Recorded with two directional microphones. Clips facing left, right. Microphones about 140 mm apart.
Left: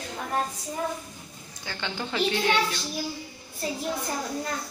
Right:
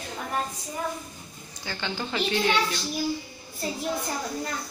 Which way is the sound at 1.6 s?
10° right (ahead or behind).